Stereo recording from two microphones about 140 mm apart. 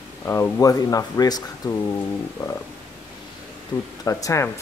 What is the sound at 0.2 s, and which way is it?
Speech, 20° left (ahead or behind).